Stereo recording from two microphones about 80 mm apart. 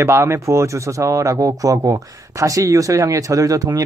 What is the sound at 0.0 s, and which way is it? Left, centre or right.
Speech, right.